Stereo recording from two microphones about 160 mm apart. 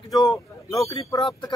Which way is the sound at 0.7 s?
20° left (ahead or behind).